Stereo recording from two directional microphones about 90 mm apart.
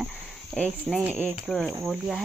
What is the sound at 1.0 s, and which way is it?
Speech, 20° right (ahead or behind).